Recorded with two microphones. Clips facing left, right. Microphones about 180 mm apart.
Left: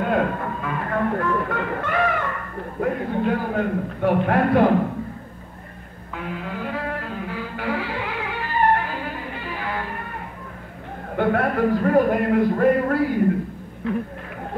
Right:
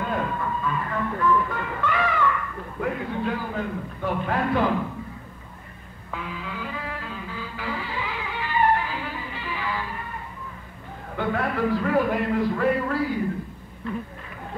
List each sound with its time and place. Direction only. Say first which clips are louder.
0.0 s music: left 5 dB; 55° left (ahead or behind)
6.1 s music: left 4 dB; 50° left (ahead or behind)
11.1 s speech: left 5 dB; 55° left (ahead or behind)